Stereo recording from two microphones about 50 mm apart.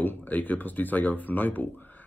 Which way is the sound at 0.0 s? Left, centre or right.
Left.